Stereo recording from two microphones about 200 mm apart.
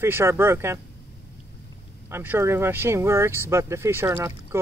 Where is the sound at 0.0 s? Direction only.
10° right (ahead or behind).